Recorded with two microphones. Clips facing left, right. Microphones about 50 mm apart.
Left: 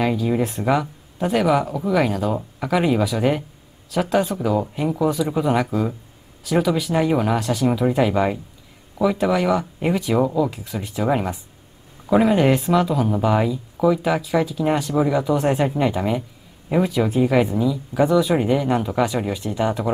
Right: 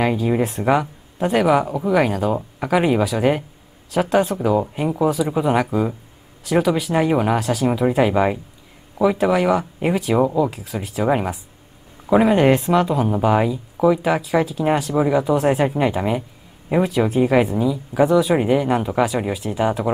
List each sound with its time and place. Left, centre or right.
0.0 s speech: centre